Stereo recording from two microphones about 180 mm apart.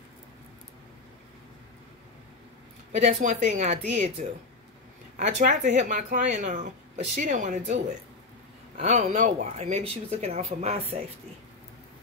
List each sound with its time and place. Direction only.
3.0 s speech: 40° right (ahead or behind)
5.1 s a woman's voice: 40° right (ahead or behind)